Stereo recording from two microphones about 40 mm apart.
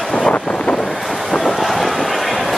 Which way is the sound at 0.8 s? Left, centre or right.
Centre.